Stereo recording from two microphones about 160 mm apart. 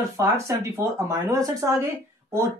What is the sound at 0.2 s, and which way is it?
Speech, 20° right (ahead or behind).